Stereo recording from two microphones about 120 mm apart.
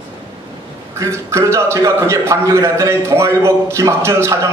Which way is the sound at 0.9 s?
25° right (ahead or behind).